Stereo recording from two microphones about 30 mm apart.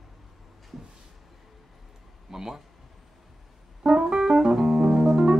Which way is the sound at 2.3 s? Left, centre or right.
Centre.